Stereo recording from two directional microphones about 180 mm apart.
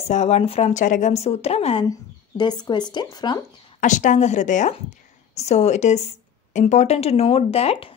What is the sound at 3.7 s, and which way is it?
A woman's voice, 45° left (ahead or behind).